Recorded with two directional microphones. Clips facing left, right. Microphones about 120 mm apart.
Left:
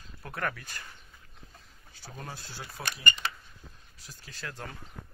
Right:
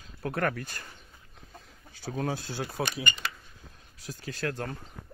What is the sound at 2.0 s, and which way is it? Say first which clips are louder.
Speech: right 11 dB; 70° right (ahead or behind).